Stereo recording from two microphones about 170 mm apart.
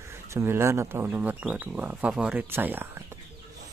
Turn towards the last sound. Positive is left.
turn(degrees=-10)  # may be behind; listen again after turning